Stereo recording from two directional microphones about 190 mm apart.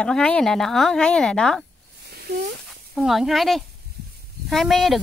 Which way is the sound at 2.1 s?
55° right (ahead or behind).